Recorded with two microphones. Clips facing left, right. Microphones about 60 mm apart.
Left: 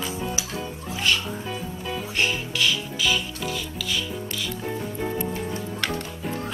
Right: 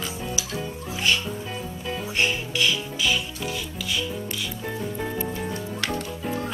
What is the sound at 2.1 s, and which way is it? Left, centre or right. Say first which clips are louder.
Music: right 1 dB; centre.